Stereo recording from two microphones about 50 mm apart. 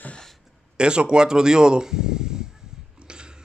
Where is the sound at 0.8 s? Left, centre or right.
Centre.